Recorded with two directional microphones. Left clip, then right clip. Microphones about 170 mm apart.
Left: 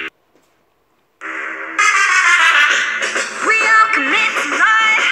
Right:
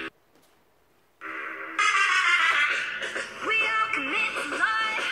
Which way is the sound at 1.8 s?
65° left (ahead or behind).